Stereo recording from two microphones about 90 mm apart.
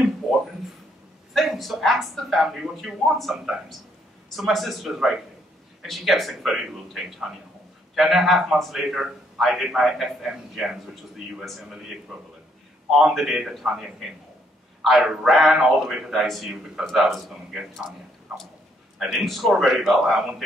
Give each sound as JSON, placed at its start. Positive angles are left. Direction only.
{"t": 1.3, "sound": "a woman's voice", "side_deg": 0}